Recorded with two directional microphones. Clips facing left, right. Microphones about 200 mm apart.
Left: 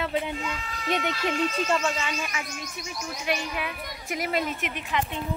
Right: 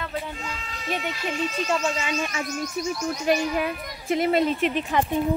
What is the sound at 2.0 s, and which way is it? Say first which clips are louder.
Speech: right 4 dB; 15° right (ahead or behind).